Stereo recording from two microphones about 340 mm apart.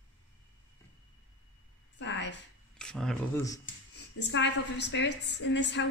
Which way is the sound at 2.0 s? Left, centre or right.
Left.